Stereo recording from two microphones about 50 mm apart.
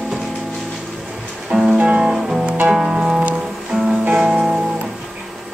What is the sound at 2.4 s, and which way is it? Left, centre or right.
Music, right.